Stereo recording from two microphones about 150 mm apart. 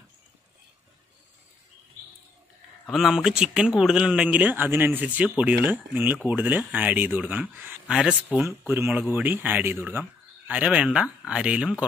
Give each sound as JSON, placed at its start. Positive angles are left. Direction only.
{"t": 2.9, "sound": "speech", "side_deg": -5}